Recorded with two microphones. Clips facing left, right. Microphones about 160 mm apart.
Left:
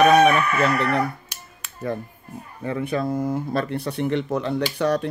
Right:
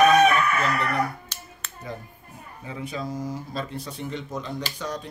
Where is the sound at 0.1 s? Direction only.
65° left (ahead or behind).